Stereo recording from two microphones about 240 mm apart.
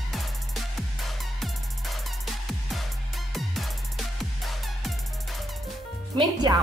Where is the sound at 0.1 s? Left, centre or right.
Centre.